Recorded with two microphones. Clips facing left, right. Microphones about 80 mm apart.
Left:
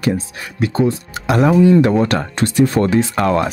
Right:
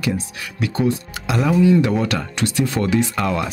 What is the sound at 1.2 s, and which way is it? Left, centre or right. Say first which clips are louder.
Speech: left 4 dB; left.